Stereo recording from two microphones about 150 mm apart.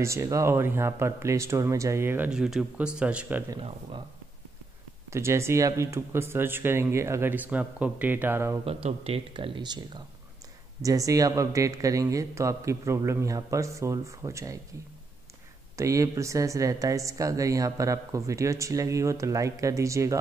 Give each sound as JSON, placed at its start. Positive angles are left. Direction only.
{"t": 0.0, "sound": "speech", "side_deg": -20}
{"t": 5.1, "sound": "speech", "side_deg": -20}
{"t": 8.6, "sound": "a woman's voice", "side_deg": -40}
{"t": 15.7, "sound": "a woman's voice", "side_deg": -20}